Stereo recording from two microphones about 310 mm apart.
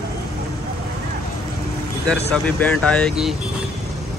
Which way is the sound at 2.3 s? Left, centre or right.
Centre.